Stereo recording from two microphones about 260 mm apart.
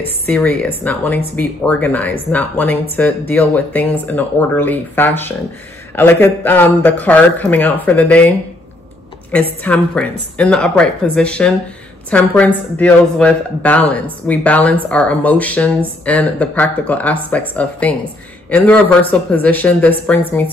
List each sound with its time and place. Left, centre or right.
0.3 s speech: centre
9.3 s speech: centre